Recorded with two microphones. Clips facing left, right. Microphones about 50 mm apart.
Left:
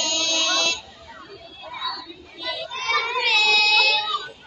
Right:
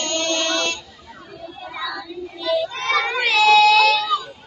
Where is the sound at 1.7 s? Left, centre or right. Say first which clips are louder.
Right 2 dB; right.